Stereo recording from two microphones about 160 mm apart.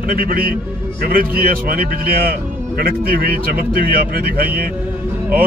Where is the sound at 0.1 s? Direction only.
65° right (ahead or behind).